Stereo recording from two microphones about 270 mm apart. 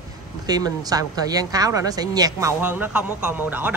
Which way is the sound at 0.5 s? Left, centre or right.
Centre.